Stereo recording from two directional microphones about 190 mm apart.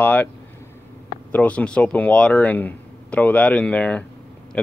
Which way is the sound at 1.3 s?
5° left (ahead or behind).